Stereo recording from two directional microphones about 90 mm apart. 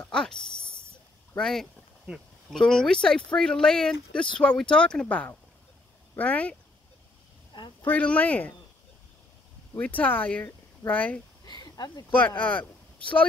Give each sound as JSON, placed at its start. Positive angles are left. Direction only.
{"t": 0.1, "sound": "speech", "side_deg": 10}
{"t": 2.1, "sound": "speech", "side_deg": -5}
{"t": 2.5, "sound": "speech", "side_deg": 5}
{"t": 7.8, "sound": "speech", "side_deg": 15}
{"t": 9.8, "sound": "speech", "side_deg": 20}
{"t": 11.4, "sound": "a sound", "side_deg": 50}
{"t": 12.2, "sound": "speech", "side_deg": 20}